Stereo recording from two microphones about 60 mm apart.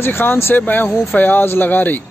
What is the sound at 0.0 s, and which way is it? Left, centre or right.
A man's voice, left.